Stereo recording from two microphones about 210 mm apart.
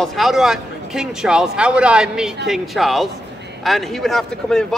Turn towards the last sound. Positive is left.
turn(degrees=5)  # may be behind; listen again after turning